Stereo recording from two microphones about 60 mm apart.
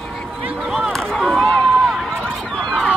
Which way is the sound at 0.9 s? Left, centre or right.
Centre.